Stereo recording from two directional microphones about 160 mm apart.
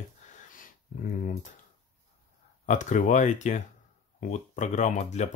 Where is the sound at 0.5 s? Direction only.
60° left (ahead or behind).